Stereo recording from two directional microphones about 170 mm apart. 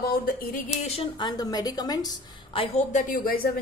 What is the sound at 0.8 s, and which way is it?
A woman's voice, 35° left (ahead or behind).